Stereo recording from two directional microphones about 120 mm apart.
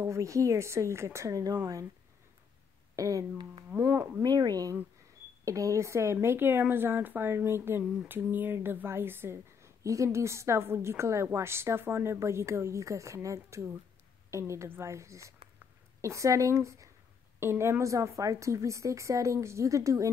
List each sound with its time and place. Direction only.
0.0 s speech: 25° right (ahead or behind)
3.0 s speech: 30° right (ahead or behind)
4.3 s speech: 35° right (ahead or behind)